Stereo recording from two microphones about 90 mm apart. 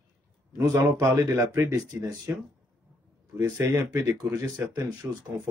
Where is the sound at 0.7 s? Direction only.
35° right (ahead or behind).